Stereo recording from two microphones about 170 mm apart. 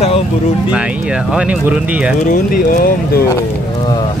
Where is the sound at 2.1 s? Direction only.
50° left (ahead or behind).